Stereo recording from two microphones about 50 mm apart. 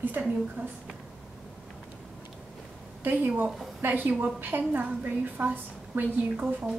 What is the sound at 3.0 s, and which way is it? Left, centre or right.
A woman's voice, right.